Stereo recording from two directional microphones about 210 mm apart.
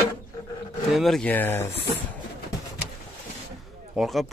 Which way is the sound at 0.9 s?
Centre (ahead or behind).